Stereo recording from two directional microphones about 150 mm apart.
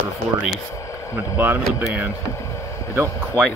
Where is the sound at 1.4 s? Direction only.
10° right (ahead or behind).